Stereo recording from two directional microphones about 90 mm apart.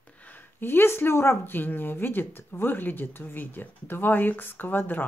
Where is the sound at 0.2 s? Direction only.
20° left (ahead or behind).